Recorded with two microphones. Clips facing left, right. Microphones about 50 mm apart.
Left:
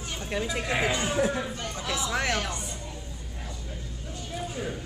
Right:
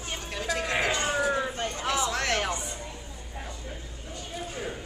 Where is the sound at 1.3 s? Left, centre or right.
Right.